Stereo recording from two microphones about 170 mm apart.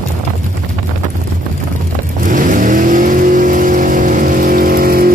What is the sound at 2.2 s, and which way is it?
Vehicle, 50° right (ahead or behind).